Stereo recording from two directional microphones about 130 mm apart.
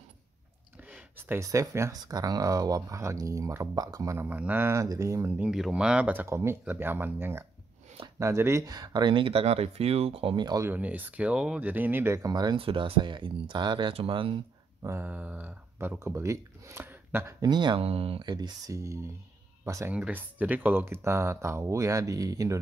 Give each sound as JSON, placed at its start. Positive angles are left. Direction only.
{"t": 0.9, "sound": "speech", "side_deg": -15}
{"t": 5.5, "sound": "speech", "side_deg": -5}
{"t": 10.6, "sound": "speech", "side_deg": -15}
{"t": 12.5, "sound": "speech", "side_deg": -45}
{"t": 14.8, "sound": "speech", "side_deg": -20}
{"t": 17.8, "sound": "speech", "side_deg": -50}
{"t": 18.3, "sound": "speech", "side_deg": -30}
{"t": 19.9, "sound": "speech", "side_deg": -10}